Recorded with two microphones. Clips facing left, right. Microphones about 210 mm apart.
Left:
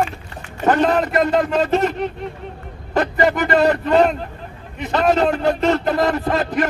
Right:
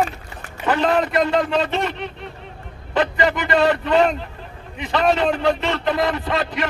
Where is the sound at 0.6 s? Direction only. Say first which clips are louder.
Left 3 dB; 45° left (ahead or behind).